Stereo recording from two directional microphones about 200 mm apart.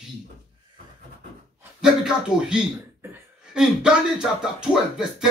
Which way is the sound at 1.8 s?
5° right (ahead or behind).